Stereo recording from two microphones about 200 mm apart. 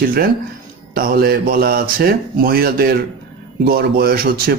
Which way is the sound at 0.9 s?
50° right (ahead or behind).